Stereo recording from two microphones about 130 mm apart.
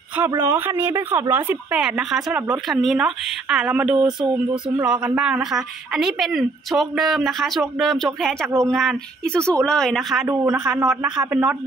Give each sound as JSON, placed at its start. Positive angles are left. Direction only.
{"t": 0.4, "sound": "speech", "side_deg": -15}
{"t": 10.2, "sound": "speech", "side_deg": -25}
{"t": 10.6, "sound": "speech", "side_deg": -5}